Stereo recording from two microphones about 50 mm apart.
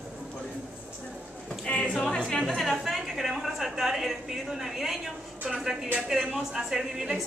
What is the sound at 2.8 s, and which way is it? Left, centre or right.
A woman's voice, centre.